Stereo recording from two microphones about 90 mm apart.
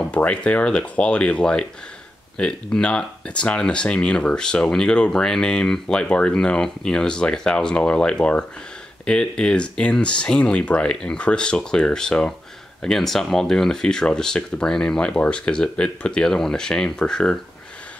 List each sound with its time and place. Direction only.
0.1 s speech: 15° left (ahead or behind)